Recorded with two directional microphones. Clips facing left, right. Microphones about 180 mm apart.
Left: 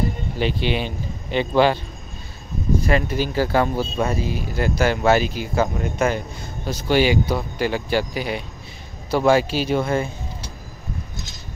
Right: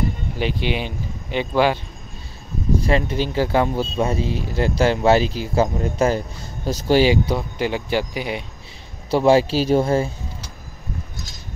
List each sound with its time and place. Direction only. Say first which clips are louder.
0.4 s speech: left 1 dB; 15° right (ahead or behind)
2.8 s speech: even; 25° right (ahead or behind)
9.1 s a man's voice: right 2 dB; 30° right (ahead or behind)